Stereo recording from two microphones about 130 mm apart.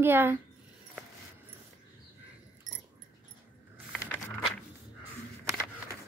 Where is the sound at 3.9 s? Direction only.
10° left (ahead or behind).